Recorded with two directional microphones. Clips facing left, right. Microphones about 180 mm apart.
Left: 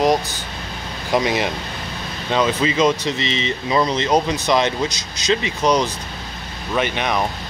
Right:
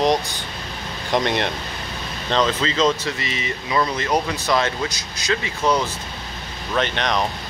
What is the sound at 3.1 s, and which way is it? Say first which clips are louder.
Speech: left 5 dB; 25° left (ahead or behind).